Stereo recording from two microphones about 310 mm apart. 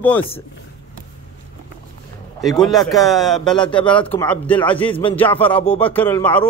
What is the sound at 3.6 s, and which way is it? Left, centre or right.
Speech, centre.